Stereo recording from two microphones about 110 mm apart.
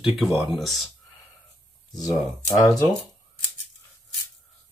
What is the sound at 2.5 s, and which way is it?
Speech, 30° left (ahead or behind).